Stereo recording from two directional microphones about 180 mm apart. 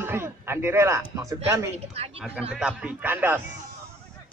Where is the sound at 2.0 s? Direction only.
35° right (ahead or behind).